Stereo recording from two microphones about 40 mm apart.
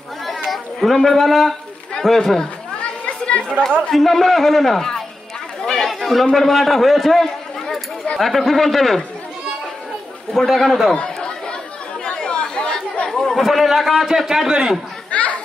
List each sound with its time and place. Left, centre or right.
0.5 s a man's voice: centre
3.1 s chatter: left
3.9 s a man's voice: centre
5.7 s chatter: centre
6.3 s a man's voice: centre
10.3 s a man's voice: centre
12.0 s chatter: left
13.4 s a man's voice: centre
15.0 s a sound: left